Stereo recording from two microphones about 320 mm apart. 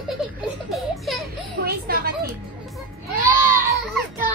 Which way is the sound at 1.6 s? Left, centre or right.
Right.